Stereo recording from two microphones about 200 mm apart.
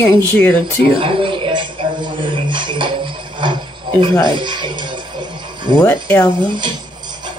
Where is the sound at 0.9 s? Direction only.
25° right (ahead or behind).